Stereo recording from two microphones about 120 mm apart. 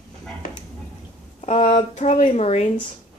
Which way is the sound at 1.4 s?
65° left (ahead or behind).